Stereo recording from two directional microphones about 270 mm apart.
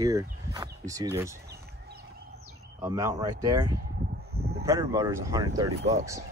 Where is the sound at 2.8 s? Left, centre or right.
Centre.